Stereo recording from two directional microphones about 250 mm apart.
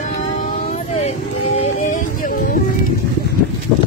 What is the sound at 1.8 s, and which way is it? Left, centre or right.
Music, left.